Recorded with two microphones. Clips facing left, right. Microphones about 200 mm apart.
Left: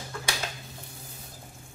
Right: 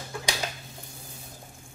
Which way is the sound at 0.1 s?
10° right (ahead or behind).